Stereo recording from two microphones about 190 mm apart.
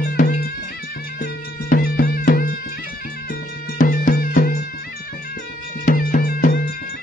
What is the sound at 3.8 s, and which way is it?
Music, 45° left (ahead or behind).